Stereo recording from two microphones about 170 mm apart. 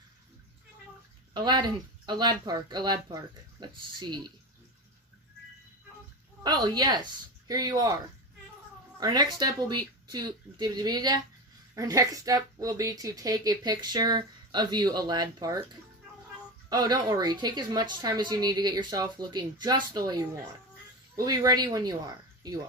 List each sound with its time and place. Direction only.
1.3 s speech: 25° right (ahead or behind)
6.4 s speech: 25° right (ahead or behind)
9.0 s speech: 25° right (ahead or behind)
16.6 s speech: 25° right (ahead or behind)